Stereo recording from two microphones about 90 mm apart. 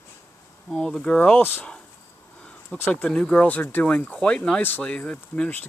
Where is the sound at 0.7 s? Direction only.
5° left (ahead or behind); by 1.7 s 20° left (ahead or behind).